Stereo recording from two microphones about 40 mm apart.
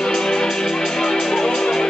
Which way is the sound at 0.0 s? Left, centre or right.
Centre.